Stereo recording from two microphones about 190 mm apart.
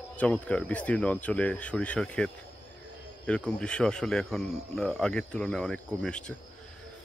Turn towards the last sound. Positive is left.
turn(degrees=5)  # may be behind; listen again after turning